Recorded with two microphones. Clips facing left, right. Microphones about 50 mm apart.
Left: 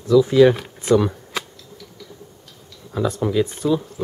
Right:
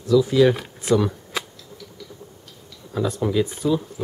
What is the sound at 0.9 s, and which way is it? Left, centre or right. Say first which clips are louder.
Speech: left 3 dB; centre.